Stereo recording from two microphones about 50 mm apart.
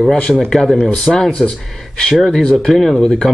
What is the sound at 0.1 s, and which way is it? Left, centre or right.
Speech, centre.